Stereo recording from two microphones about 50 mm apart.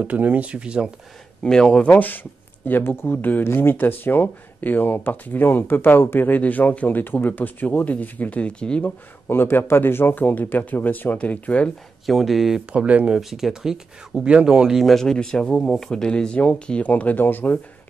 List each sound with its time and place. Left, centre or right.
0.0 s speech: right
1.4 s speech: centre
2.0 s speech: left
3.4 s speech: left
3.7 s speech: left
9.3 s speech: left
12.1 s speech: centre
12.7 s speech: right
13.2 s speech: centre
14.8 s speech: centre
15.0 s a man's voice: centre
16.8 s speech: left